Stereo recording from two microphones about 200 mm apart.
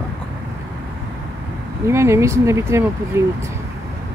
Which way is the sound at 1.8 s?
15° right (ahead or behind).